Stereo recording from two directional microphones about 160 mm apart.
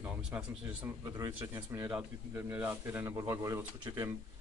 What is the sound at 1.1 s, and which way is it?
Speech, 20° right (ahead or behind).